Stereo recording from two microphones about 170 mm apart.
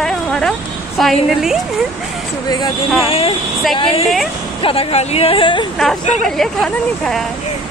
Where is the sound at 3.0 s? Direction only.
35° left (ahead or behind).